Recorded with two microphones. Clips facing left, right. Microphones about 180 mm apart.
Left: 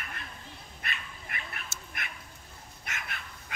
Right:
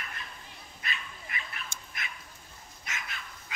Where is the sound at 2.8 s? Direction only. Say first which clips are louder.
Even; 55° left (ahead or behind).